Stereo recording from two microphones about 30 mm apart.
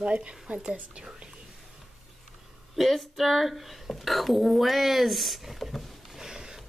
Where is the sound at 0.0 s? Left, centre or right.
Right.